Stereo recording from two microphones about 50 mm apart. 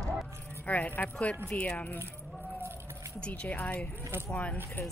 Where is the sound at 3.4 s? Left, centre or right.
Left.